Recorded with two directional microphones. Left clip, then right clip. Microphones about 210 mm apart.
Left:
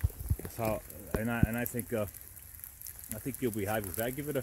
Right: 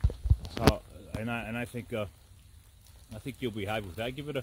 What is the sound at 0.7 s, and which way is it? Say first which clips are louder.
Speech: left 3 dB; centre (ahead or behind).